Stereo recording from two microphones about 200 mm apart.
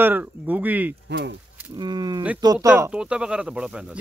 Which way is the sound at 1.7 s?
20° right (ahead or behind).